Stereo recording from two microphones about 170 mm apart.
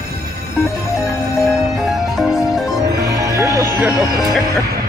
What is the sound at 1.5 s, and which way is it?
Music, centre (ahead or behind).